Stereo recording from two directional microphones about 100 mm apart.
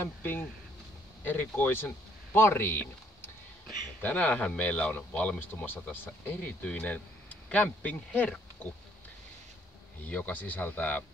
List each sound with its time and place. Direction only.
0.0 s speech: 20° left (ahead or behind)
10.0 s speech: 15° left (ahead or behind)